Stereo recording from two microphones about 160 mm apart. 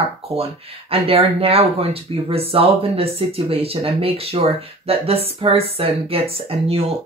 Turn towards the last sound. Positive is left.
turn(degrees=-40)  # may be behind; listen again after turning